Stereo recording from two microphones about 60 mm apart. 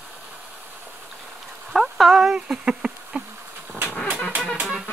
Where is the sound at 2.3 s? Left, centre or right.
Centre.